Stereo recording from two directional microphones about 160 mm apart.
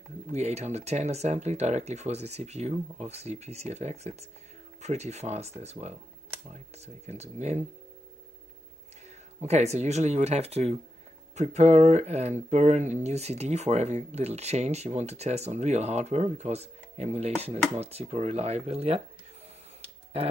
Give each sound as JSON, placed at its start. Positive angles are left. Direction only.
{"t": 0.3, "sound": "speech", "side_deg": -45}
{"t": 7.1, "sound": "speech", "side_deg": -45}
{"t": 9.4, "sound": "speech", "side_deg": -45}
{"t": 19.8, "sound": "a sound", "side_deg": -40}